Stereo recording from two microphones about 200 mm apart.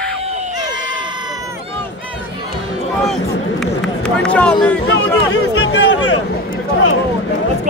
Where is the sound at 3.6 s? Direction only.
Centre (ahead or behind).